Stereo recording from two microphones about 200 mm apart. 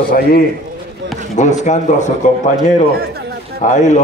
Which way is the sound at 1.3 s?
35° left (ahead or behind).